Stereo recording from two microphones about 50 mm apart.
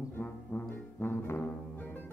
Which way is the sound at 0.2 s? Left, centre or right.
Left.